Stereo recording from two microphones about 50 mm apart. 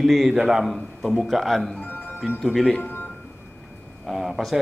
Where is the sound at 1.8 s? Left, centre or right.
Left.